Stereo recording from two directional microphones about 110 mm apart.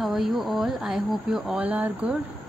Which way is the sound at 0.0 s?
Centre (ahead or behind).